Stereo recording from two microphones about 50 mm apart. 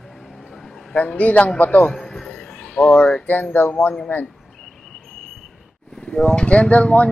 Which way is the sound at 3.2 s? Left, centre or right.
Left.